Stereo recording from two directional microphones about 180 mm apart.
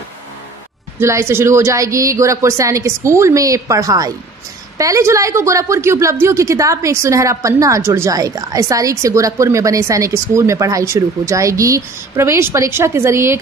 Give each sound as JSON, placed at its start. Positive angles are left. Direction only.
{"t": 0.9, "sound": "a woman's voice", "side_deg": -15}